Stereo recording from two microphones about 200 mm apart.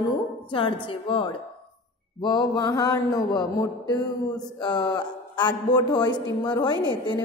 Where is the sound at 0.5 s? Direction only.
25° left (ahead or behind).